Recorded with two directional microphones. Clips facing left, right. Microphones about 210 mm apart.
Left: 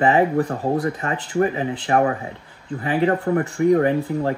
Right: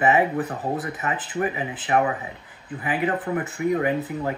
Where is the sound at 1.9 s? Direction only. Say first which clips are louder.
Left 3 dB; 40° left (ahead or behind).